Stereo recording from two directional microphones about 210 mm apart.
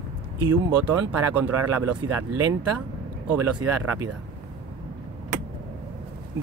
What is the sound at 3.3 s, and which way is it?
Speech, 10° right (ahead or behind).